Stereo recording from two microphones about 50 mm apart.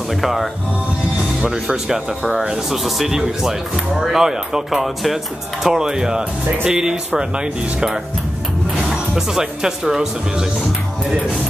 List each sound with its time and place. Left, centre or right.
0.2 s speech: centre
1.4 s speech: centre